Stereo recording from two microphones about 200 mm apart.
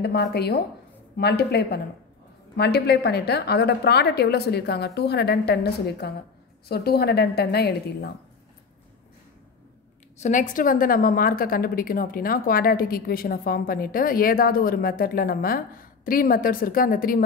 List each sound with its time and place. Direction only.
0.0 s a woman's voice: 55° left (ahead or behind)
10.2 s a woman's voice: 40° left (ahead or behind)